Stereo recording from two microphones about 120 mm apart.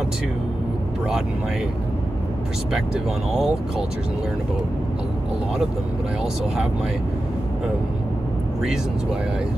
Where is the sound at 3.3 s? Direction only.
5° right (ahead or behind).